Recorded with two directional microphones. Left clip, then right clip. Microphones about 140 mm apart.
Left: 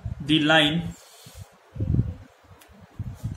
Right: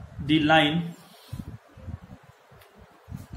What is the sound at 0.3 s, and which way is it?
Speech, 25° left (ahead or behind).